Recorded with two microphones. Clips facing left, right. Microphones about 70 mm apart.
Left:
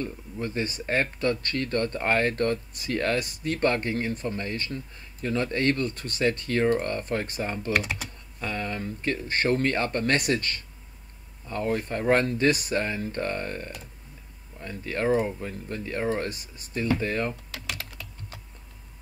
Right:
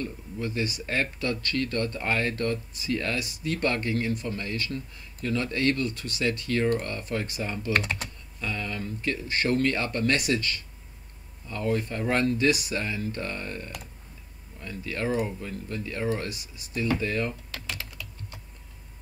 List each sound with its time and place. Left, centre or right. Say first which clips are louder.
0.0 s speech: left 1 dB; left
7.7 s speech: right 1 dB; centre
8.4 s speech: left 2 dB; left